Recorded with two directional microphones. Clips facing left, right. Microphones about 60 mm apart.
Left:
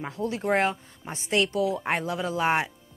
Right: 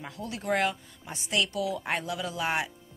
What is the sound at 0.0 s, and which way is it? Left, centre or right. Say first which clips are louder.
Speech: left 7 dB; left.